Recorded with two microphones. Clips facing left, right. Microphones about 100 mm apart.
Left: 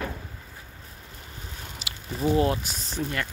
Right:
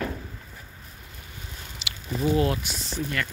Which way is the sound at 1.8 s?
40° left (ahead or behind).